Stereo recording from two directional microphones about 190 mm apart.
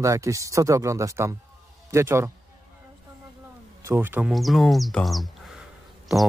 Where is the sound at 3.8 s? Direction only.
10° right (ahead or behind).